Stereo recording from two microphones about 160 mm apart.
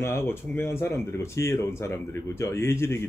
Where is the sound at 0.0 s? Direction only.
15° left (ahead or behind).